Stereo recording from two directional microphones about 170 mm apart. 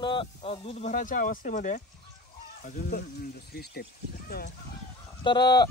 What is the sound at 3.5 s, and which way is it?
Speech, 65° left (ahead or behind).